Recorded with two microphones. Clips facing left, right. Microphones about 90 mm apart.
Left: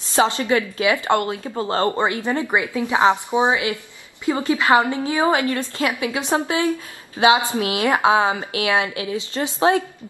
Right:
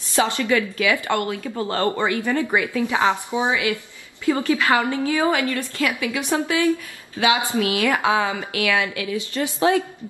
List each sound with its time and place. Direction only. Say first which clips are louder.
0.1 s a woman's voice: left 2 dB; 25° left (ahead or behind)